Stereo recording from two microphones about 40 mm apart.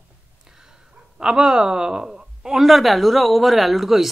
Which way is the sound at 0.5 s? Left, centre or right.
Centre.